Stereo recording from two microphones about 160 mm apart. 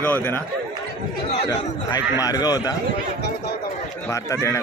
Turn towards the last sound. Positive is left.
turn(degrees=20)  # may be behind; listen again after turning